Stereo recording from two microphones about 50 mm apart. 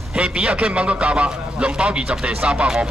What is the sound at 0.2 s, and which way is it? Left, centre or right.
Speech, right.